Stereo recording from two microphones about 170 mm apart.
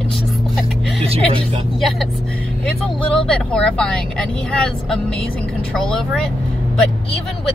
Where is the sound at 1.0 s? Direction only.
35° right (ahead or behind).